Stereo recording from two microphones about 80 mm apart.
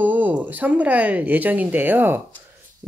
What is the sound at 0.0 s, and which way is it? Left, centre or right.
Speech, right.